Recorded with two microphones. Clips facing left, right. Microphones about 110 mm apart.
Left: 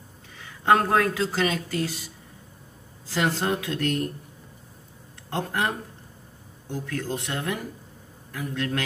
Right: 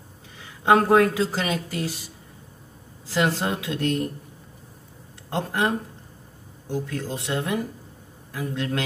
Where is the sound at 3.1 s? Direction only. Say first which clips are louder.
Right 1 dB; 25° right (ahead or behind).